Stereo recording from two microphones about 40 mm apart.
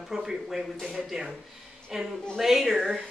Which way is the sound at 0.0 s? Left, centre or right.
Centre.